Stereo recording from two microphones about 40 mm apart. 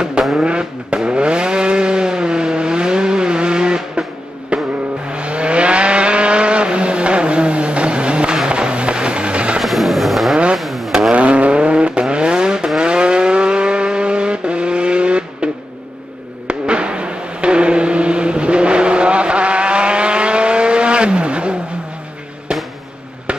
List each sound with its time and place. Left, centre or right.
0.3 s vehicle: right
4.5 s music: right
5.1 s vehicle: right
8.5 s fireworks: right
9.6 s a sound: centre
10.3 s vehicle: right
10.6 s vehicle: centre
11.1 s vehicle: right
16.4 s a sound: right
22.5 s fireworks: right